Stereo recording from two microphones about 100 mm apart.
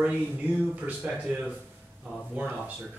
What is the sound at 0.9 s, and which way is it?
Speech, 15° right (ahead or behind).